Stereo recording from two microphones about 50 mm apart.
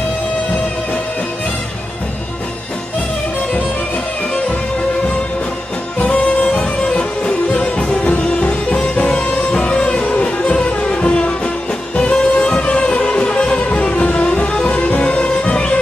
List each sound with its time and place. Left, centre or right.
5.9 s music: left
14.7 s music: left